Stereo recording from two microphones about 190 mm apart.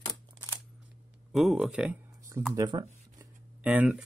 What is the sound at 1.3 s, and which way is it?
Speech, centre (ahead or behind).